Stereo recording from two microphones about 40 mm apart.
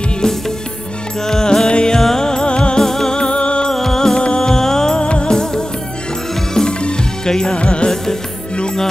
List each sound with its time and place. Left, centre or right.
1.2 s music: centre
2.8 s music: centre
3.2 s music: left
3.7 s music: centre